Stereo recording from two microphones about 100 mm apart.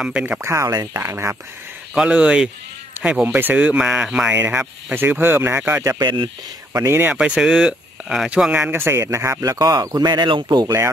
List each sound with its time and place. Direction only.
0.0 s speech: 10° right (ahead or behind)
0.4 s speech: 30° right (ahead or behind)
2.0 s speech: 10° right (ahead or behind)
3.3 s speech: 20° right (ahead or behind)
4.9 s speech: 20° right (ahead or behind)
5.9 s speech: 50° right (ahead or behind)
6.7 s speech: 25° right (ahead or behind)
7.2 s speech: 10° right (ahead or behind); by 10.7 s 50° right (ahead or behind)